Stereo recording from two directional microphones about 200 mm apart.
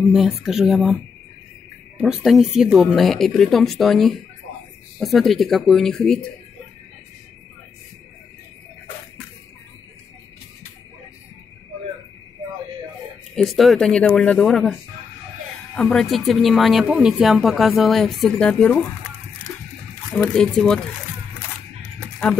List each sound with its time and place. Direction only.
0.1 s speech: centre (ahead or behind)
2.0 s speech: centre (ahead or behind)
13.4 s speech: centre (ahead or behind)
20.2 s speech: 5° left (ahead or behind)
22.2 s speech: 5° left (ahead or behind)